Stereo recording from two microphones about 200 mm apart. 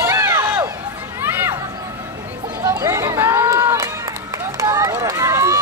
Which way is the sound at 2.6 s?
15° right (ahead or behind).